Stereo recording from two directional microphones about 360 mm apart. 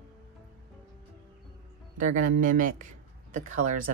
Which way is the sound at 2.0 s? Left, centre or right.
Right.